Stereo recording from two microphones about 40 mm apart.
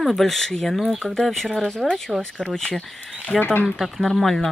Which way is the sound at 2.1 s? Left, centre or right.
Centre.